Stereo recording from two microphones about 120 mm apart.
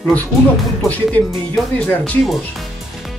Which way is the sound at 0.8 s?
10° left (ahead or behind).